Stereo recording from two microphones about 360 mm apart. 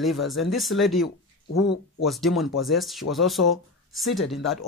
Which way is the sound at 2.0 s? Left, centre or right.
Centre.